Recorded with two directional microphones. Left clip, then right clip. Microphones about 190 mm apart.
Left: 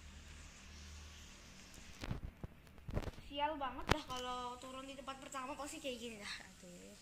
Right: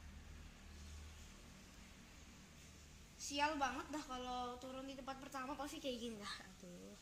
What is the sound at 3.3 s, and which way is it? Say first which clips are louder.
A woman's voice: right 1 dB; 65° right (ahead or behind).